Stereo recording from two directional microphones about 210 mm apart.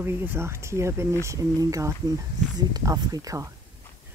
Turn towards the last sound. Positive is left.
turn(degrees=-15)  # may be behind; listen again after turning